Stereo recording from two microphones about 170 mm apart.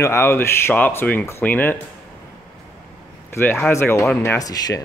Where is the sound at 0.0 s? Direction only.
15° left (ahead or behind).